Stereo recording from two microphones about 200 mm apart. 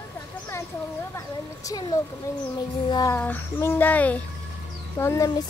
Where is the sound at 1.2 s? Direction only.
15° left (ahead or behind).